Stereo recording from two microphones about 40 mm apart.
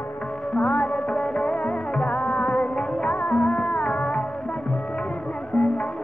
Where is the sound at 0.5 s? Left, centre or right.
Left.